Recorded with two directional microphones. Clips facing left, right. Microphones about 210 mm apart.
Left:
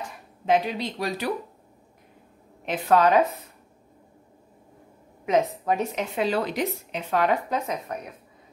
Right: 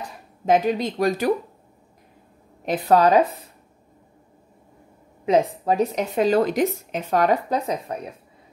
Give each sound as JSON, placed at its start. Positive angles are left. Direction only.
{"t": 0.5, "sound": "speech", "side_deg": -45}
{"t": 2.6, "sound": "speech", "side_deg": -40}
{"t": 5.2, "sound": "speech", "side_deg": -35}